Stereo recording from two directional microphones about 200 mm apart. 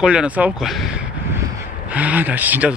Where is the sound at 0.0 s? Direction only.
5° right (ahead or behind).